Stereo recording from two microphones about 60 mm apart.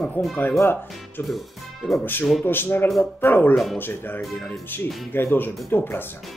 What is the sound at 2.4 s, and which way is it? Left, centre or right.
Speech, left.